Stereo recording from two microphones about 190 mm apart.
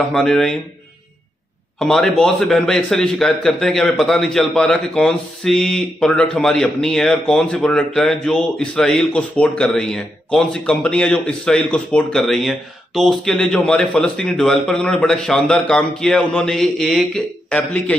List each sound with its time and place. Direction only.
0.1 s a man's voice: 5° left (ahead or behind)
1.8 s a man's voice: 5° left (ahead or behind)